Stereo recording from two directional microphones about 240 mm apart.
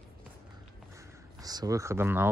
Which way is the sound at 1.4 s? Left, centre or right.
Centre.